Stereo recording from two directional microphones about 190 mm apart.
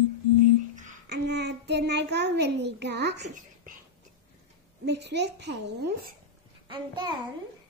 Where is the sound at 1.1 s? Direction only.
60° right (ahead or behind).